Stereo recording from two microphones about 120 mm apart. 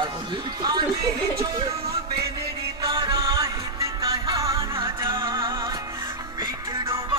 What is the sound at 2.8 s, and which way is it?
Music, 40° right (ahead or behind).